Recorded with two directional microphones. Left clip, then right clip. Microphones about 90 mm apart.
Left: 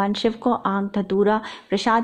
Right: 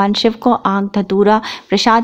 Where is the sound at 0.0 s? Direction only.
35° right (ahead or behind).